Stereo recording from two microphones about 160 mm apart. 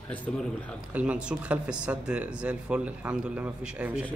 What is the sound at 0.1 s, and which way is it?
Speech, 10° left (ahead or behind).